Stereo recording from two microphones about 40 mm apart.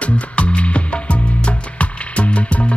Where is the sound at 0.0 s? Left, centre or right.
Left.